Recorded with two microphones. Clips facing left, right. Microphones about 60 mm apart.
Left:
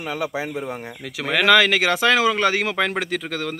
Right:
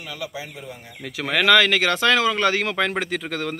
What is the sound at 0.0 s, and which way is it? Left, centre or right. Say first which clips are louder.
Speech: left 7 dB; left.